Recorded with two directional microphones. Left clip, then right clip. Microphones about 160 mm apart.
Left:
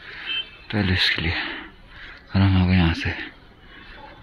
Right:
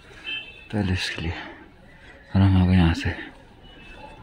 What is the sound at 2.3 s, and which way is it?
Speech, 25° right (ahead or behind).